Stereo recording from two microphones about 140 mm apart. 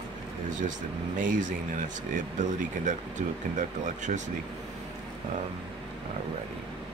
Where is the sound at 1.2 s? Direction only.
65° right (ahead or behind).